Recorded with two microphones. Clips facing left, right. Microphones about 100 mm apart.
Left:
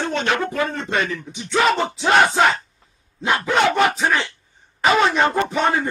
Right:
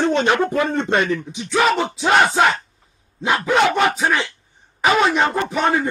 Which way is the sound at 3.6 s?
5° right (ahead or behind).